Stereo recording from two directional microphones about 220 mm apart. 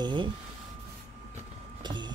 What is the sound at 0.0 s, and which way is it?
Speech, 20° right (ahead or behind).